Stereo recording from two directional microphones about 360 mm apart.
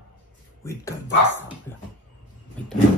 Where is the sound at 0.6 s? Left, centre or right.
Centre.